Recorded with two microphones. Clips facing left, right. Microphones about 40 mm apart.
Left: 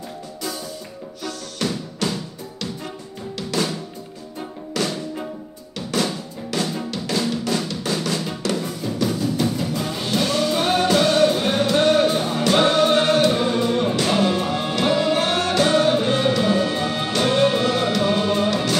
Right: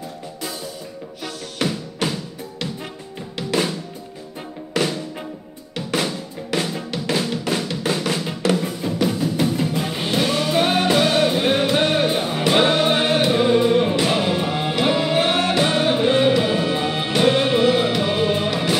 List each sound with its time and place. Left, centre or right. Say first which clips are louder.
1.2 s music: right 1 dB; right
4.4 s music: right 2 dB; centre
5.8 s drum: even; right
6.5 s music: right 2 dB; right
6.9 s drum: right 1 dB; right